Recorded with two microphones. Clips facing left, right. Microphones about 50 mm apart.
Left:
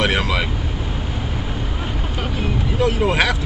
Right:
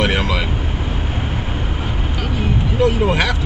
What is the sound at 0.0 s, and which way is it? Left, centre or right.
Vehicle, centre.